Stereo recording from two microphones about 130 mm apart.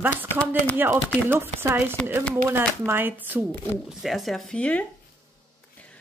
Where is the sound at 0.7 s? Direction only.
15° right (ahead or behind).